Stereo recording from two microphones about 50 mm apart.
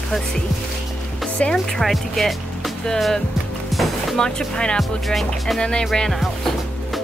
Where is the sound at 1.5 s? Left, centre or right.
Centre.